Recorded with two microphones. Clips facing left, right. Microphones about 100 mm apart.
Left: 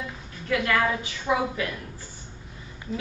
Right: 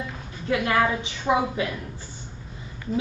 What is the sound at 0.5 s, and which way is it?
A woman's voice, 25° right (ahead or behind).